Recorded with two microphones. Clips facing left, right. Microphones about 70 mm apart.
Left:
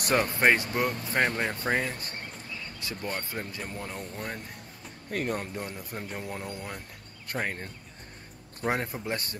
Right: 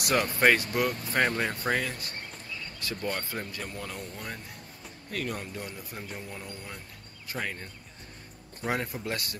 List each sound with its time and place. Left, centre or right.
0.0 s speech: left
5.1 s speech: left
8.6 s speech: left